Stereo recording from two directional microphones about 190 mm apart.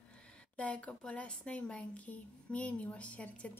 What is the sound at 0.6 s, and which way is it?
A woman's voice, 5° left (ahead or behind).